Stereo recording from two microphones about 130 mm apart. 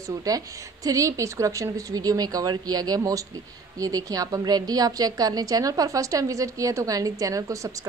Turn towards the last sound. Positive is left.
turn(degrees=-25)  # may be behind; listen again after turning